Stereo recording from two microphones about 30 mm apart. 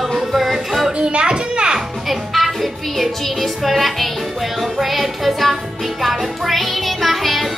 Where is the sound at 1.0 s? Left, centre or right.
Right.